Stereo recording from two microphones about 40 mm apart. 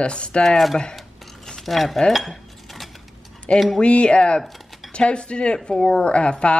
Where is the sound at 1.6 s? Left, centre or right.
Centre.